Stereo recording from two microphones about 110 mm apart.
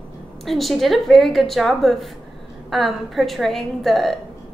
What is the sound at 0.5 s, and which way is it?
A woman's voice, centre (ahead or behind).